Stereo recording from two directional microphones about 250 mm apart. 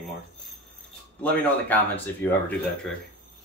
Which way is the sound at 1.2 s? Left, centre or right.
Centre.